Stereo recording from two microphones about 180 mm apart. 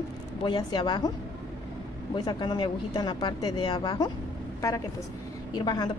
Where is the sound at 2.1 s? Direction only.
25° left (ahead or behind).